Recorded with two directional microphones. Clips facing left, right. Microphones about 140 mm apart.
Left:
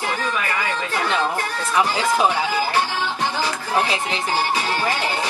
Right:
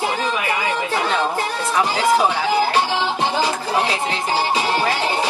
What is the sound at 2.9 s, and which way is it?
Music, 20° right (ahead or behind).